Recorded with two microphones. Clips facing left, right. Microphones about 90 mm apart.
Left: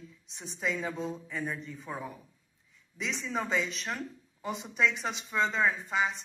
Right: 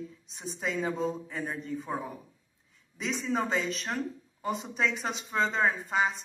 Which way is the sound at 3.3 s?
45° right (ahead or behind).